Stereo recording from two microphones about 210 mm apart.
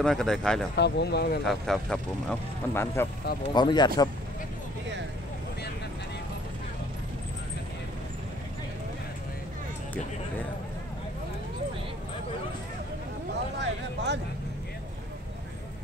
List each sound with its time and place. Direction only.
0.0 s speech: 5° left (ahead or behind)
0.7 s speech: 55° left (ahead or behind)
1.4 s speech: centre (ahead or behind); by 4.1 s 20° left (ahead or behind)
13.6 s a sound: 55° right (ahead or behind)